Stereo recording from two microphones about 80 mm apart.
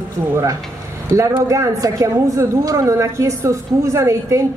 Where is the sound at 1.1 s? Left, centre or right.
Right.